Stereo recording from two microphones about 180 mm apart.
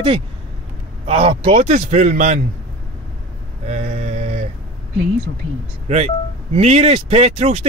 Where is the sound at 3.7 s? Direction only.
40° right (ahead or behind).